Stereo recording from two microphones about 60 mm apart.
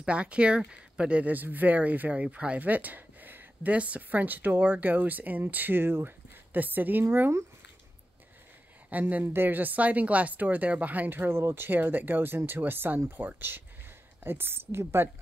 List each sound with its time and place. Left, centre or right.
0.0 s speech: centre; by 7.4 s right
8.9 s speech: right
14.2 s speech: right